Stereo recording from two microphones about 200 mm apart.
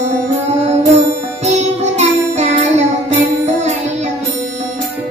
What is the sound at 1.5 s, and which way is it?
Music, 35° right (ahead or behind).